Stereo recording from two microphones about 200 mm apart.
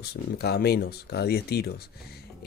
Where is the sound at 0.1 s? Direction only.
55° left (ahead or behind).